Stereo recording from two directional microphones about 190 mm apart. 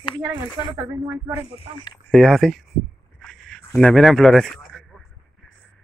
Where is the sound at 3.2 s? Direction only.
5° left (ahead or behind).